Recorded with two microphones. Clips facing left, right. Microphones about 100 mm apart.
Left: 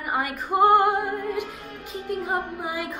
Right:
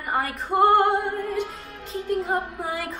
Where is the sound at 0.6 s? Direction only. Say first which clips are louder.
Even; 5° left (ahead or behind).